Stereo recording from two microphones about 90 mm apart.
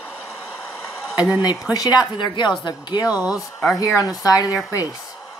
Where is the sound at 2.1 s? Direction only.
60° left (ahead or behind).